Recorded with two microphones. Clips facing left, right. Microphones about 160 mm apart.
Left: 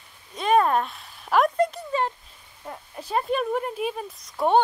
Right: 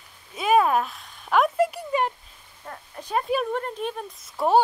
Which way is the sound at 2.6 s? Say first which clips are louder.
Left 1 dB; 5° left (ahead or behind).